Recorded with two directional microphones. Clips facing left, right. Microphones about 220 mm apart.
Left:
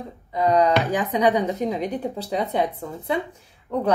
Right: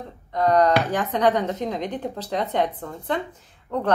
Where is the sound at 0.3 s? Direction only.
10° left (ahead or behind).